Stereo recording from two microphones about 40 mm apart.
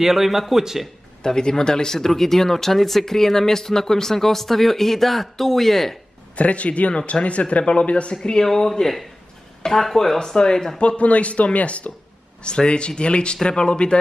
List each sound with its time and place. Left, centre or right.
0.0 s a man's voice: centre
1.2 s speech: centre
6.3 s a man's voice: left
8.5 s speech: centre
10.1 s speech: centre
10.8 s a man's voice: left